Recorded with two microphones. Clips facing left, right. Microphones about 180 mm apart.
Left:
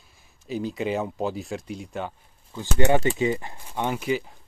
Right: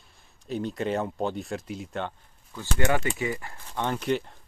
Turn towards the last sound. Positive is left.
turn(degrees=5)  # may be behind; listen again after turning